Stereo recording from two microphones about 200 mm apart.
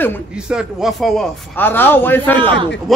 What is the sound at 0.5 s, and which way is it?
Speech, 5° right (ahead or behind).